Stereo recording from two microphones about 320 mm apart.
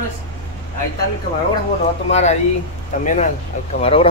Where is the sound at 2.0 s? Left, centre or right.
Centre.